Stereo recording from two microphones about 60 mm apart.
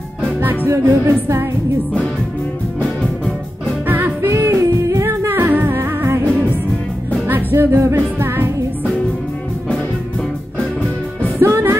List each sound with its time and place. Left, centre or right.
0.4 s music: right
0.7 s music: right
3.8 s music: right
4.3 s music: right
5.0 s music: right
7.2 s music: right
11.3 s music: right